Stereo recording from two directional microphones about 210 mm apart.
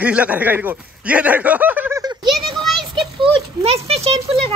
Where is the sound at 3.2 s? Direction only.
30° right (ahead or behind).